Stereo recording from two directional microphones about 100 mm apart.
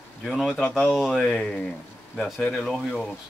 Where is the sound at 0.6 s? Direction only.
10° left (ahead or behind).